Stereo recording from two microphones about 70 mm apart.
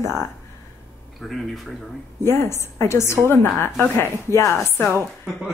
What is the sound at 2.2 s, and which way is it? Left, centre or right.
A woman's voice, left.